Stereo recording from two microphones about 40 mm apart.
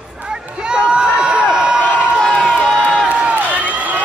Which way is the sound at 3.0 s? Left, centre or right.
Right.